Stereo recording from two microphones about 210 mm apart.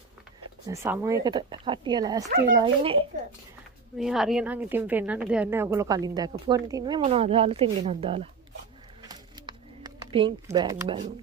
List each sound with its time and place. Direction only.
0.7 s speech: 10° right (ahead or behind)
4.0 s a woman's voice: centre (ahead or behind); by 8.3 s 30° right (ahead or behind)
9.0 s a sound: 20° right (ahead or behind)